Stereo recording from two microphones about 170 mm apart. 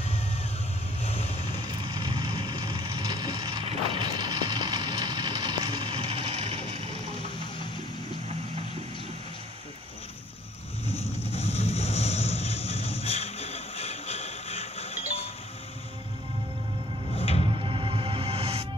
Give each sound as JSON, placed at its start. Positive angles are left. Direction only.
{"t": 1.0, "sound": "vehicle", "side_deg": 40}
{"t": 2.0, "sound": "vehicle", "side_deg": -25}
{"t": 10.9, "sound": "vehicle", "side_deg": 40}
{"t": 17.5, "sound": "music", "side_deg": -30}